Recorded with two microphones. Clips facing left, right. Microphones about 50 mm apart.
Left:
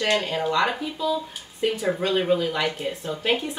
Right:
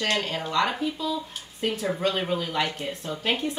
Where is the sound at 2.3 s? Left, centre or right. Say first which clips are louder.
Left 4 dB; centre.